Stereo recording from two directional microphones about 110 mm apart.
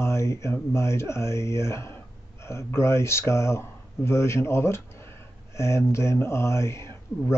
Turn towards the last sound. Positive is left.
turn(degrees=25)  # may be behind; listen again after turning